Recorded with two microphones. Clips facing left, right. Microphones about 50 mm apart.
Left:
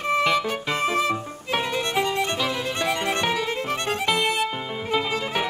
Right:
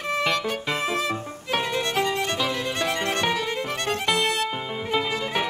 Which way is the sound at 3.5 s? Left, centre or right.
Centre.